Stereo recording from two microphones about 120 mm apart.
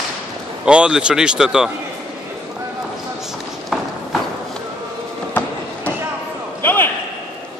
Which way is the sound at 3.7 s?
5° right (ahead or behind).